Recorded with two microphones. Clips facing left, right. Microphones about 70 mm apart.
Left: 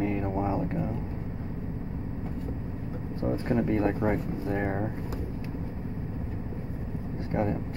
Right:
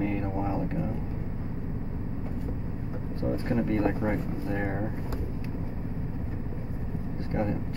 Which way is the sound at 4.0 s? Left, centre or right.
Centre.